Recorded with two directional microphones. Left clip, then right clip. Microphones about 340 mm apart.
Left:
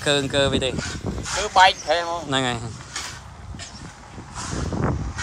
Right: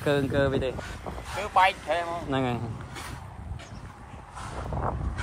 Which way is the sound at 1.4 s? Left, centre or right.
Left.